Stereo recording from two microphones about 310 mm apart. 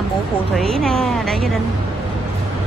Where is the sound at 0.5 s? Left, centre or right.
Centre.